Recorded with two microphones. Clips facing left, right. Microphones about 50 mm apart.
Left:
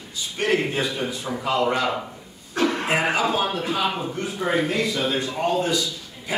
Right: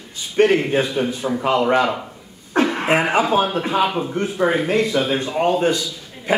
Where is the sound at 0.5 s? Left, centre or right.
Right.